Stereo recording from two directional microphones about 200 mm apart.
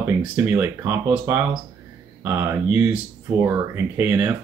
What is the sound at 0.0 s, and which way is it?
Speech, 15° right (ahead or behind).